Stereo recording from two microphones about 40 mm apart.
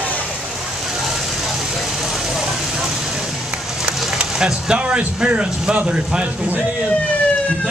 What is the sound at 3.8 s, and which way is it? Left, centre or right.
Run, right.